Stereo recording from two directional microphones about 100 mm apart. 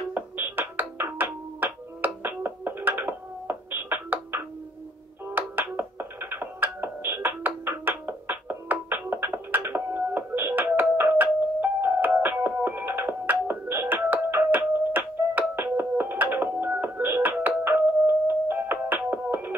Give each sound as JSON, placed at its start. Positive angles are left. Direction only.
{"t": 0.1, "sound": "music", "side_deg": -20}